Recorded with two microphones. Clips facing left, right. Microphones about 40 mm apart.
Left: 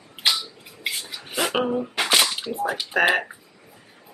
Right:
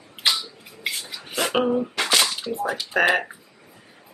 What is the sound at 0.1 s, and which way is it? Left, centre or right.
Finger snapping, centre.